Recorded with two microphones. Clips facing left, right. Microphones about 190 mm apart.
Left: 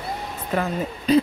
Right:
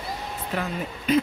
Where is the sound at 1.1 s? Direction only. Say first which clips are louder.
Left 4 dB; 35° left (ahead or behind).